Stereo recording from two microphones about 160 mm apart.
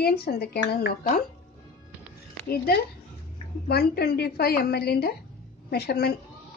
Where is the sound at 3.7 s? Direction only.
80° left.